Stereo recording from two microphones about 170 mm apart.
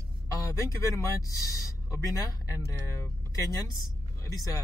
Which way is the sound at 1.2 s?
20° left (ahead or behind).